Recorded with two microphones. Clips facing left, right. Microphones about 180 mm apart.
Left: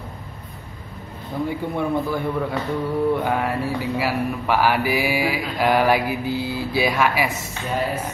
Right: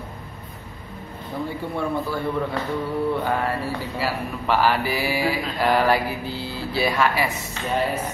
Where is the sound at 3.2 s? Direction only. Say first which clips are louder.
Left 2 dB; 10° left (ahead or behind).